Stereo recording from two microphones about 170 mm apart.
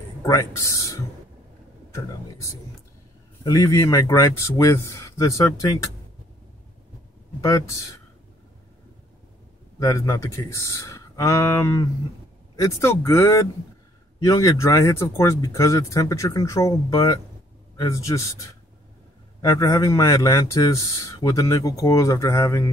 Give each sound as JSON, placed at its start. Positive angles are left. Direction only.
{"t": 0.2, "sound": "speech", "side_deg": 20}
{"t": 3.4, "sound": "speech", "side_deg": 20}
{"t": 7.4, "sound": "speech", "side_deg": 20}
{"t": 9.8, "sound": "speech", "side_deg": 20}
{"t": 19.4, "sound": "speech", "side_deg": 20}